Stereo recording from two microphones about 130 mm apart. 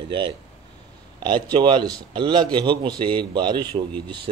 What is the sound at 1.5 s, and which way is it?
Speech, 40° right (ahead or behind).